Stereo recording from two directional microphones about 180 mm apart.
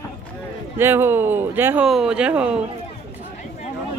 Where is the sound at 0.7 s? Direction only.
15° right (ahead or behind).